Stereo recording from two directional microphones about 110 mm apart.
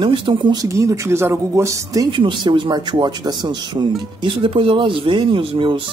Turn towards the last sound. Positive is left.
turn(degrees=-50)  # may be behind; listen again after turning